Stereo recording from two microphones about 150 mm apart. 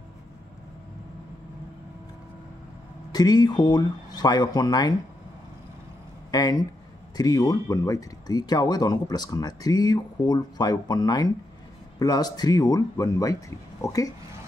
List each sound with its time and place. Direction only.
3.1 s speech: 25° left (ahead or behind)
6.3 s speech: 25° left (ahead or behind)